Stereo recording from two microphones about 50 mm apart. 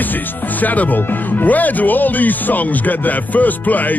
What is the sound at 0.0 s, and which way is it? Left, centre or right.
Speech, left.